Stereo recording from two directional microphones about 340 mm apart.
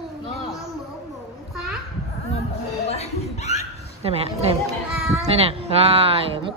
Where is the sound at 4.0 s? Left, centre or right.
Centre.